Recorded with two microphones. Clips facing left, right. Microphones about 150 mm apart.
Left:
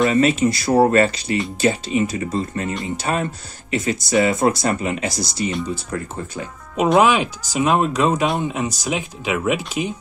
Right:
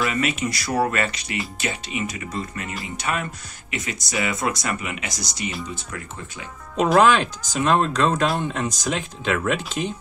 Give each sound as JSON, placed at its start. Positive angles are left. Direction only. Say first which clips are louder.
{"t": 0.0, "sound": "speech", "louder": "left 8 dB", "side_deg": 30}
{"t": 7.0, "sound": "speech", "louder": "right 1 dB", "side_deg": 10}